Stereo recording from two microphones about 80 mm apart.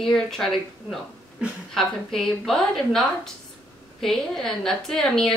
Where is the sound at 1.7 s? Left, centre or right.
Centre.